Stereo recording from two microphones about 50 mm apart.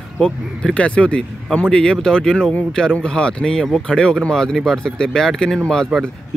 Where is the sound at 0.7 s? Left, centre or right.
Left.